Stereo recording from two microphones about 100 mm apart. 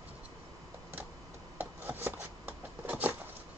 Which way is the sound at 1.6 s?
20° right (ahead or behind).